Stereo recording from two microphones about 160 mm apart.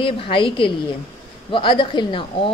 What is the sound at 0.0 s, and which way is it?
A woman's voice, 35° left (ahead or behind).